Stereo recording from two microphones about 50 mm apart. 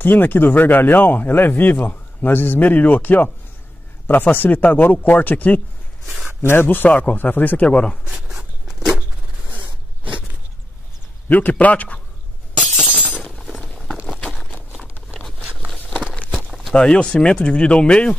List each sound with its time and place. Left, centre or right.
0.0 s speech: left
6.4 s a man's voice: left
7.1 s speech: left
7.6 s speech: left
8.1 s a sound: centre
11.2 s speech: left
13.4 s a sound: centre
14.0 s a sound: centre
16.3 s walk: centre
16.7 s speech: left